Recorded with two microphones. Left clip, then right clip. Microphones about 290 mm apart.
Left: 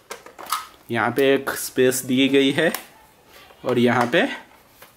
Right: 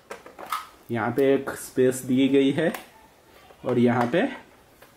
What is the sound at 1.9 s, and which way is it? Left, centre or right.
Speech, centre.